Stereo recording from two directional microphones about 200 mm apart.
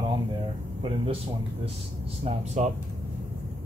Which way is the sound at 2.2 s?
35° right (ahead or behind).